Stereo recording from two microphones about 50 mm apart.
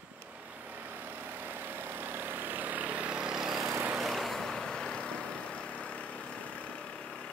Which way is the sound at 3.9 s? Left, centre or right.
Centre.